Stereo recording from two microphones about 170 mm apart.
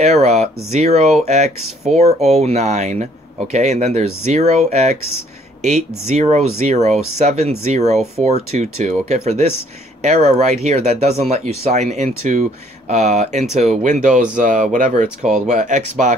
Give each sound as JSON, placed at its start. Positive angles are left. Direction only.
{"t": 0.0, "sound": "speech", "side_deg": -40}